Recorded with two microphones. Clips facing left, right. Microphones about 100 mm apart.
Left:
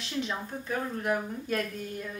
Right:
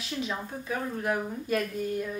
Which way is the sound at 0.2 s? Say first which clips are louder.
Left 1 dB; 5° right (ahead or behind).